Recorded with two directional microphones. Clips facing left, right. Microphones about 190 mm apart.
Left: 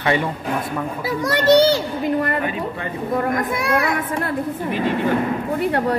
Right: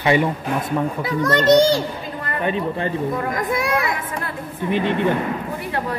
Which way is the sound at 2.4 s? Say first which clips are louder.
Right 3 dB; 25° right (ahead or behind).